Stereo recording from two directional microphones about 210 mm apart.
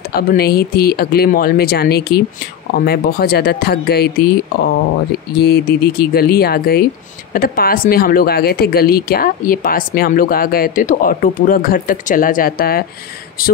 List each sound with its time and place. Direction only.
0.1 s speech: 45° left (ahead or behind)
5.4 s speech: 50° left (ahead or behind)